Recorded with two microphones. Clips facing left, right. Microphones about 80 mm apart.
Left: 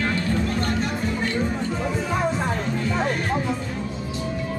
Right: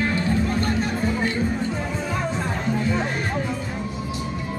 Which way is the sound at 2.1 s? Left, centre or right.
Centre.